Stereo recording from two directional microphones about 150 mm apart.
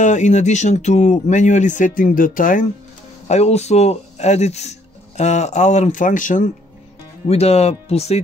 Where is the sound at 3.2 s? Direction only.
45° left (ahead or behind).